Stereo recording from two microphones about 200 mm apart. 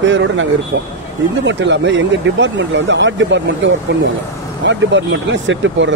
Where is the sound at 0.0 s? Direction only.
65° right (ahead or behind).